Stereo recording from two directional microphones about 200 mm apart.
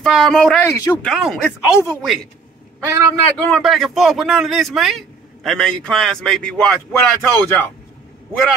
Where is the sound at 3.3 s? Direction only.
5° left (ahead or behind).